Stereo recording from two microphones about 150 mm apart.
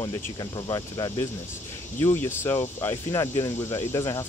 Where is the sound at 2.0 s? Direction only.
15° left (ahead or behind).